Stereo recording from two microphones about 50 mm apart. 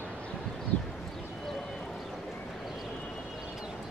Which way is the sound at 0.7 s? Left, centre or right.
Left.